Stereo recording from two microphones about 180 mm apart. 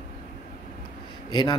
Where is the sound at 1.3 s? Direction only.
25° left (ahead or behind).